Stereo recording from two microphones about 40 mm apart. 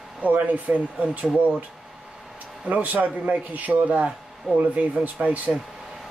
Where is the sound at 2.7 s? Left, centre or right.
Right.